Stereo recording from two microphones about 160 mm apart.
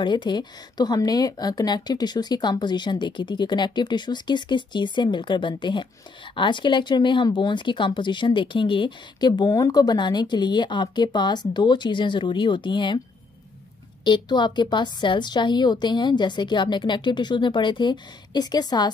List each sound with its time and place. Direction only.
0.0 s speech: 30° left (ahead or behind)
14.0 s speech: 30° left (ahead or behind)